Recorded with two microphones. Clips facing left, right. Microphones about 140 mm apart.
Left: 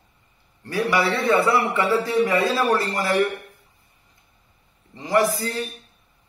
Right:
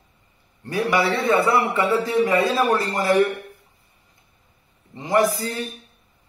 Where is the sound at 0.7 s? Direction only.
20° right (ahead or behind).